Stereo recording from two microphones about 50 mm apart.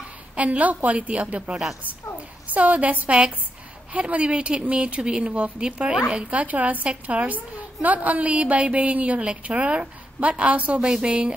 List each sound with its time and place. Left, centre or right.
0.4 s a woman's voice: right
6.4 s a woman's voice: right
10.8 s a woman's voice: centre